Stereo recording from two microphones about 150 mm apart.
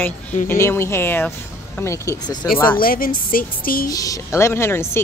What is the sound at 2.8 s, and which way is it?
Speech, 70° left (ahead or behind).